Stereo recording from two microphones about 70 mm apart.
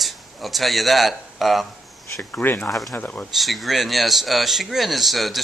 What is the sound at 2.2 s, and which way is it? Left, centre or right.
Speech, left.